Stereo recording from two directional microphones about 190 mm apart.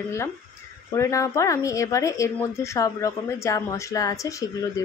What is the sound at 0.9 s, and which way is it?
Speech, 15° left (ahead or behind).